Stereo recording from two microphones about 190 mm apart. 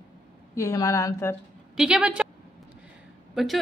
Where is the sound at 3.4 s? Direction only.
Centre (ahead or behind).